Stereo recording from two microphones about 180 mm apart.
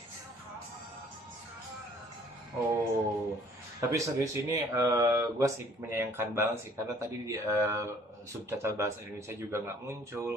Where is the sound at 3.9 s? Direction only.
20° right (ahead or behind).